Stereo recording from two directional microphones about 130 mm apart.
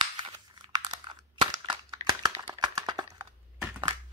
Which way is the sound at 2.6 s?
35° right (ahead or behind).